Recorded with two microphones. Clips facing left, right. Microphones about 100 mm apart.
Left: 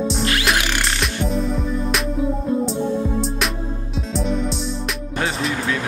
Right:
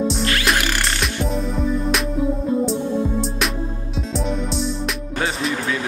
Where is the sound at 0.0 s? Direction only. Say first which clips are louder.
Even; centre (ahead or behind).